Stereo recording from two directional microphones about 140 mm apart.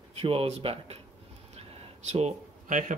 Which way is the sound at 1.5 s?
50° right (ahead or behind).